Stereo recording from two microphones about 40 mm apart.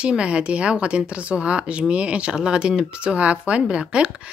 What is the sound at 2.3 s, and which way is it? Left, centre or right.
Speech, right.